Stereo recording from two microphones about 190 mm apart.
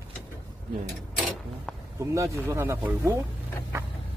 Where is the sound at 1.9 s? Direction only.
15° right (ahead or behind).